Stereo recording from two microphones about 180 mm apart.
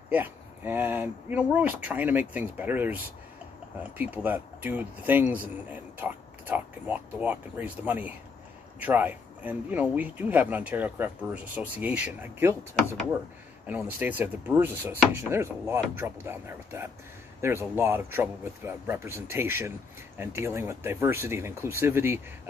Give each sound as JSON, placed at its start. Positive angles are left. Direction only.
{"t": 0.1, "sound": "speech", "side_deg": -10}
{"t": 4.0, "sound": "speech", "side_deg": -10}
{"t": 13.7, "sound": "speech", "side_deg": -10}